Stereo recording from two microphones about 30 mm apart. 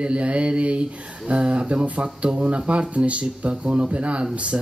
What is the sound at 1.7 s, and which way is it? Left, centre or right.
Mantra, right.